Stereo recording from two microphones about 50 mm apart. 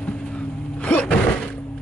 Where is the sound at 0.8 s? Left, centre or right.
Left.